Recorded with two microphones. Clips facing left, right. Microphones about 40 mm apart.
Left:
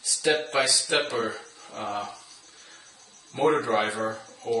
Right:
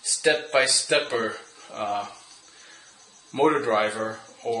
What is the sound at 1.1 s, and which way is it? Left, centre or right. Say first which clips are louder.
Speech: right 2 dB; centre.